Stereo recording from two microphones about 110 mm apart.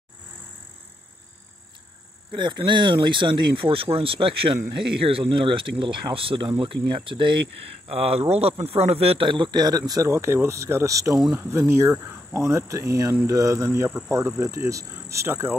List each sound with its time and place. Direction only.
2.3 s speech: 45° right (ahead or behind)
7.9 s speech: 70° right (ahead or behind); by 15.5 s 25° right (ahead or behind)